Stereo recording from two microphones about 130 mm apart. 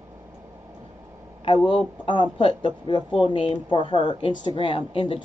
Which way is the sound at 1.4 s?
40° left (ahead or behind).